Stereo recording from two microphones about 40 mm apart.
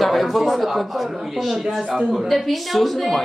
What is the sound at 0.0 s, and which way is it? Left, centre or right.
A woman's voice, centre.